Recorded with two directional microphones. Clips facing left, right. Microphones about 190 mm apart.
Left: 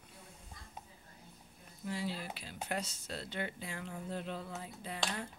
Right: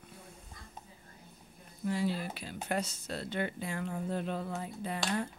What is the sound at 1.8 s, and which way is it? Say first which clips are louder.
Speech: right 7 dB; 50° right (ahead or behind).